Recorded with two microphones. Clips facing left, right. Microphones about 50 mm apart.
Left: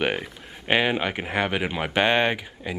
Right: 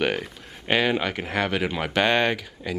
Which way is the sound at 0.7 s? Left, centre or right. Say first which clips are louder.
Even; centre.